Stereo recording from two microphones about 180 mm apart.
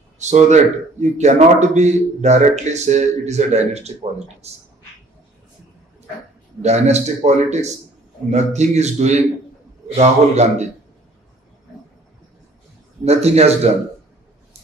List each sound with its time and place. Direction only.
0.2 s speech: 40° right (ahead or behind)
6.6 s speech: 40° right (ahead or behind)
13.0 s speech: 35° right (ahead or behind)